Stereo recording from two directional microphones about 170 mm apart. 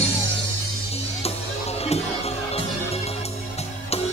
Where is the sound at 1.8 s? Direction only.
35° left (ahead or behind).